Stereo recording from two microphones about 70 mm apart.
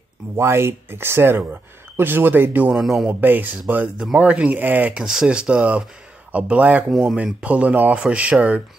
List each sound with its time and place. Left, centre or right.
0.4 s speech: right
2.7 s speech: centre
3.1 s speech: right
4.9 s speech: centre
6.9 s speech: centre
7.3 s speech: centre